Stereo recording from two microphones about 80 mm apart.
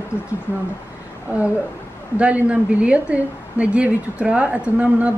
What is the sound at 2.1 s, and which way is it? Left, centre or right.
A woman's voice, centre.